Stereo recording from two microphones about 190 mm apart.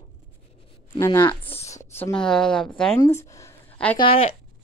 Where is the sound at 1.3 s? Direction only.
30° left (ahead or behind).